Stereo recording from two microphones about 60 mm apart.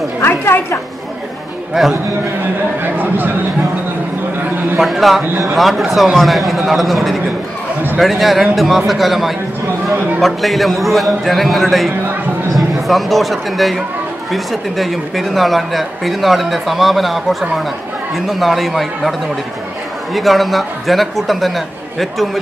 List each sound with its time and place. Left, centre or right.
0.2 s a woman's voice: left
1.7 s speech: centre
2.8 s speech: right
4.7 s speech: centre
20.2 s speech: centre